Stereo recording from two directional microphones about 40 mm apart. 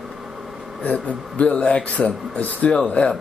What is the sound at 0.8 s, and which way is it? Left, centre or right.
Speech, left.